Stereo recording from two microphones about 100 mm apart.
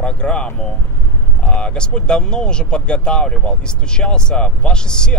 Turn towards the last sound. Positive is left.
turn(degrees=10)  # may be behind; listen again after turning